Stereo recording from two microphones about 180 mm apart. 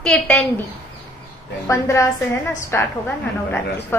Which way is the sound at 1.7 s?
15° left (ahead or behind).